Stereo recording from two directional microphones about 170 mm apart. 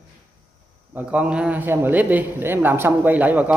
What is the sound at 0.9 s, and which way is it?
A man's voice, 10° right (ahead or behind).